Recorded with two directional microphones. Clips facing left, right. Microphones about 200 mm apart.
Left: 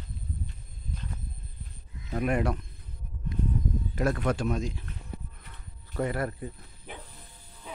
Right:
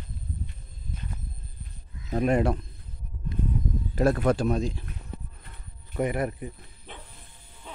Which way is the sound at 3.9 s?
35° right (ahead or behind).